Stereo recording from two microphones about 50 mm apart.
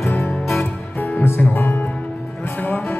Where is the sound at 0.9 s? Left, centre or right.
Left.